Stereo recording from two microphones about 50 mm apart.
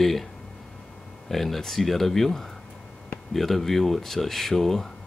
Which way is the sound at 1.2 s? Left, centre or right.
Centre.